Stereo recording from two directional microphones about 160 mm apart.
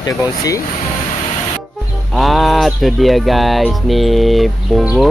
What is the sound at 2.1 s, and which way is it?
Music, centre (ahead or behind).